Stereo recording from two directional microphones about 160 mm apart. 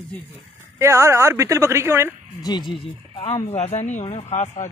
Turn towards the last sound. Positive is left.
turn(degrees=45)  # may be behind; listen again after turning